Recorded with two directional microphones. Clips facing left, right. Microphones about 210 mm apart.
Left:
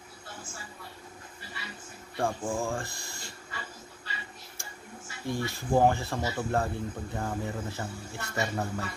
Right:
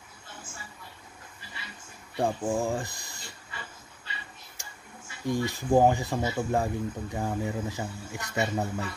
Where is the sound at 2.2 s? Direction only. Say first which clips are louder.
Right 3 dB; 20° right (ahead or behind).